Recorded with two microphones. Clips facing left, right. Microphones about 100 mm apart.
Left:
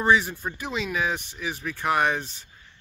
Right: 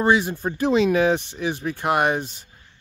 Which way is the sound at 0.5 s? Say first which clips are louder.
Right 14 dB; 35° right (ahead or behind).